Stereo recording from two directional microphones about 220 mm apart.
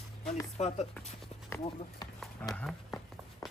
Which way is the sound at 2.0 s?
15° left (ahead or behind).